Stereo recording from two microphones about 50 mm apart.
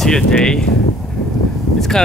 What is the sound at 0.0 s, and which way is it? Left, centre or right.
Speech, centre.